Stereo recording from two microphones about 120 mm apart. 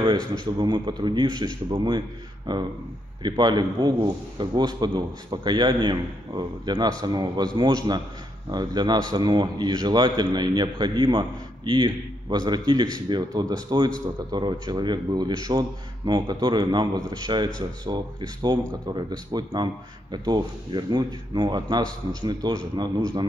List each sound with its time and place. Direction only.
0.6 s a man's voice: 40° right (ahead or behind)